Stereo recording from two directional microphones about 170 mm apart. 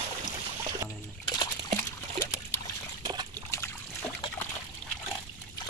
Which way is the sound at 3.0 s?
25° right (ahead or behind).